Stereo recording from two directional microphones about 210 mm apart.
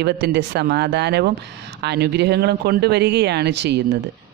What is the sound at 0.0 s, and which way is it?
Speech, 50° right (ahead or behind).